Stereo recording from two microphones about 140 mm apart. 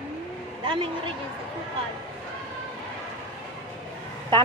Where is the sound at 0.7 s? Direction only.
40° right (ahead or behind).